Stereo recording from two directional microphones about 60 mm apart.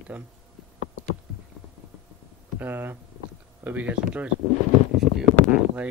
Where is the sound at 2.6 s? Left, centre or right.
Right.